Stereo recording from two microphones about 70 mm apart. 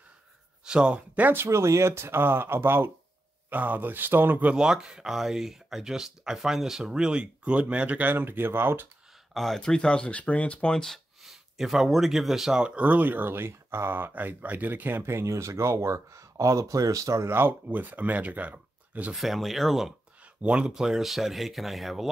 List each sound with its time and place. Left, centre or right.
0.7 s speech: centre
1.3 s speech: right
4.6 s speech: centre
8.1 s speech: right
9.3 s speech: centre
11.2 s speech: centre; by 19.1 s right
19.1 s speech: centre
20.4 s speech: centre